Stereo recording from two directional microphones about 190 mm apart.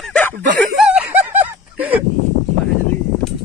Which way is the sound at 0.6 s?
Centre (ahead or behind).